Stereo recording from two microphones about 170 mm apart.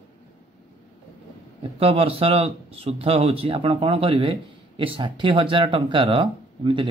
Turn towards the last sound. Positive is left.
turn(degrees=-30)  # may be behind; listen again after turning